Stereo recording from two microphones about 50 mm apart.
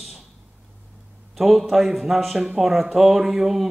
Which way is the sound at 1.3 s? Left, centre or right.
Centre.